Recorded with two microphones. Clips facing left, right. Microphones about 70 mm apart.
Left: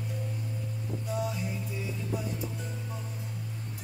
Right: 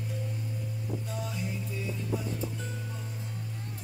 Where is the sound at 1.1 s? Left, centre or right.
Centre.